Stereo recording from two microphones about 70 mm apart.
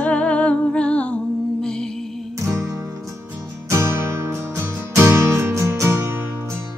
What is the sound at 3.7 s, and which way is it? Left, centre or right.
Music, right.